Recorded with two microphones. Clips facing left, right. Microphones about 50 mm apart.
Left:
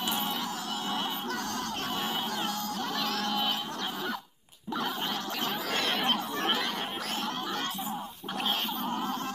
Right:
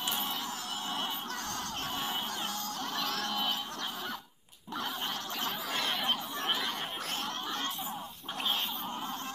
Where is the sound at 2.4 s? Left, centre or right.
Right.